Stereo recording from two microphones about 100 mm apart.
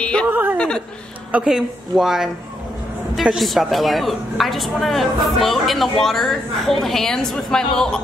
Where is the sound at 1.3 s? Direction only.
5° right (ahead or behind).